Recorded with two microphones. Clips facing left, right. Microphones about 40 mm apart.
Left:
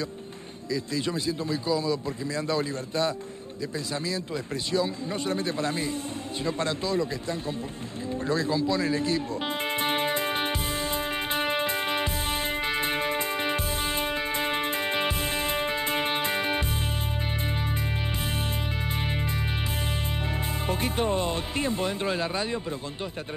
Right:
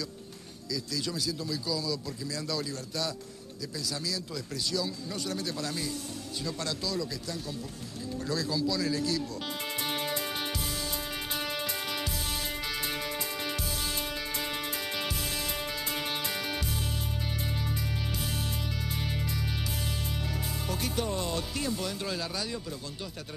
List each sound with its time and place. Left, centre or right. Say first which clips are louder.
0.7 s a man's voice: left 6 dB; left
4.7 s a man's voice: left 8 dB; left
9.8 s music: left 6 dB; left
20.6 s speech: left 6 dB; left